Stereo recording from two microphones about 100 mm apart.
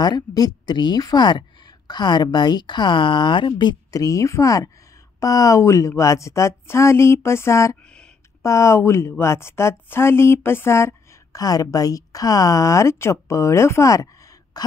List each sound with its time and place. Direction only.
0.0 s a woman's voice: 45° left (ahead or behind)
4.0 s a woman's voice: 35° left (ahead or behind)
11.4 s speech: 35° left (ahead or behind)